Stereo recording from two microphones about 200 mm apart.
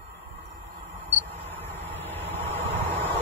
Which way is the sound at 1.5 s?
10° left (ahead or behind).